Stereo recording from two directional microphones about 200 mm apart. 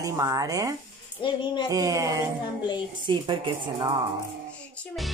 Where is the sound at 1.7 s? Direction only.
15° right (ahead or behind).